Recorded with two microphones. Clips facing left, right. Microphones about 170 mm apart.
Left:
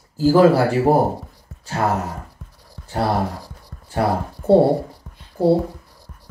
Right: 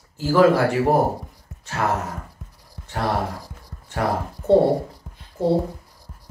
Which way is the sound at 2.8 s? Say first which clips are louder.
Left 3 dB; 35° left (ahead or behind).